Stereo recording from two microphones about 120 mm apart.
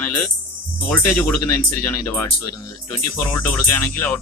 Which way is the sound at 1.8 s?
25° left (ahead or behind).